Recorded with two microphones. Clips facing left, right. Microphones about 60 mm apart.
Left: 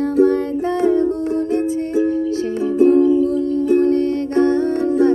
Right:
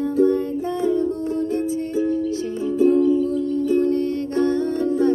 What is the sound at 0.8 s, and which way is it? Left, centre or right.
Music, left.